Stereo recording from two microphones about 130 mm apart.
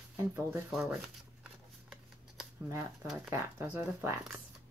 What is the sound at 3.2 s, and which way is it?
Speech, 20° right (ahead or behind).